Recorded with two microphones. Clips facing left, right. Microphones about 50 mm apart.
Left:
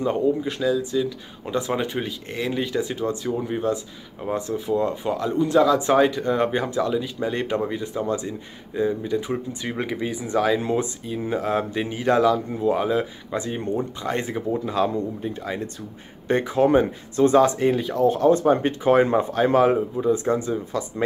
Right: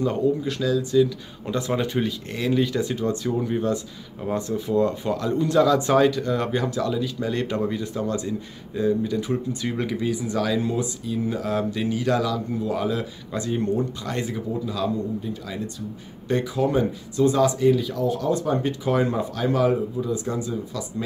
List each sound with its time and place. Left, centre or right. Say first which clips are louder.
0.0 s speech: left 1 dB; left